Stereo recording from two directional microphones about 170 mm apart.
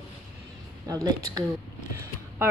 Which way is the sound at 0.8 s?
20° right (ahead or behind).